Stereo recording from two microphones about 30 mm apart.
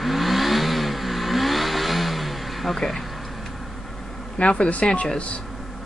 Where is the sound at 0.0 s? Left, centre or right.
Centre.